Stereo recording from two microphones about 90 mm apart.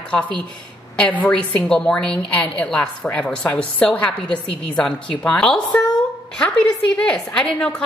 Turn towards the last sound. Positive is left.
turn(degrees=10)  # may be behind; listen again after turning